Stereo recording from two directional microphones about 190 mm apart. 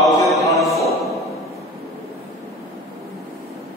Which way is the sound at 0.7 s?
Centre (ahead or behind).